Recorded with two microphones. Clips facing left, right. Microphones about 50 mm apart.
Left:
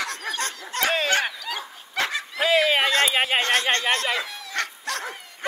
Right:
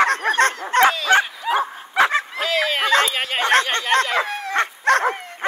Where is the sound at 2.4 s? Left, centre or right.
Centre.